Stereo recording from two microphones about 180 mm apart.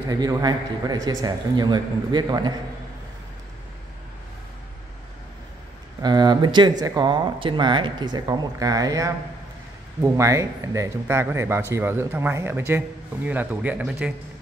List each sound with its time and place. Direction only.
0.1 s a man's voice: 20° right (ahead or behind)
6.0 s a man's voice: 25° right (ahead or behind); by 14.1 s 5° right (ahead or behind)